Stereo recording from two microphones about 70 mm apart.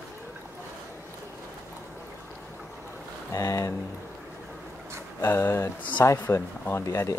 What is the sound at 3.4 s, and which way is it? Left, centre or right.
Speech, left.